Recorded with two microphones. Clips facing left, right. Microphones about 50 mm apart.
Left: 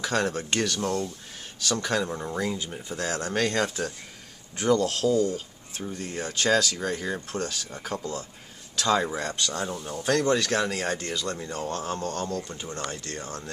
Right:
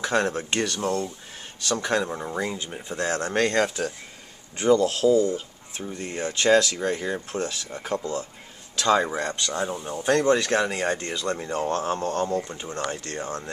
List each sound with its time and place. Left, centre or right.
0.0 s speech: centre
4.8 s speech: centre
5.1 s speech: centre
7.9 s speech: centre; by 12.4 s right
12.4 s speech: centre
12.9 s speech: centre
13.2 s speech: centre